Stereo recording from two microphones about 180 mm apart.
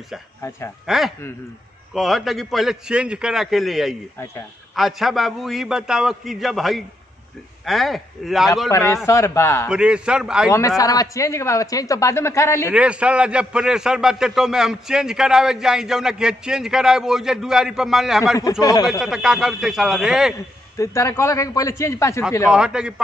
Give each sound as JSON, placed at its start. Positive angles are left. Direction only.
{"t": 0.4, "sound": "speech", "side_deg": 15}
{"t": 0.8, "sound": "a man's voice", "side_deg": 0}
{"t": 8.6, "sound": "speech", "side_deg": 15}
{"t": 9.7, "sound": "a man's voice", "side_deg": -5}
{"t": 10.8, "sound": "speech", "side_deg": 20}
{"t": 12.6, "sound": "a man's voice", "side_deg": -5}
{"t": 18.4, "sound": "speech", "side_deg": 20}
{"t": 18.9, "sound": "a man's voice", "side_deg": -5}
{"t": 20.7, "sound": "speech", "side_deg": 15}
{"t": 22.5, "sound": "a man's voice", "side_deg": -5}